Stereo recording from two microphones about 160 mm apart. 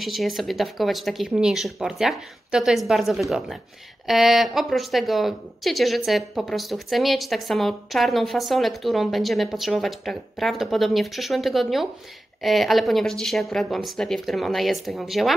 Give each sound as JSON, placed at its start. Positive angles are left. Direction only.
{"t": 0.0, "sound": "a woman's voice", "side_deg": 0}